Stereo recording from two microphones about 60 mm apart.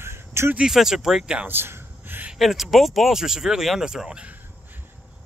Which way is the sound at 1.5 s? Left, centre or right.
Right.